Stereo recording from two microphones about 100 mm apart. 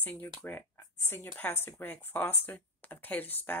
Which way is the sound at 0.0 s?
20° left (ahead or behind).